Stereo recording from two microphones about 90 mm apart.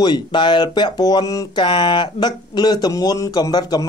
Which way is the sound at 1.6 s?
65° left (ahead or behind).